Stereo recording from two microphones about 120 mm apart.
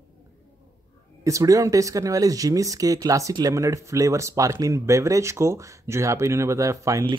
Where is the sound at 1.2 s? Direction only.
30° right (ahead or behind).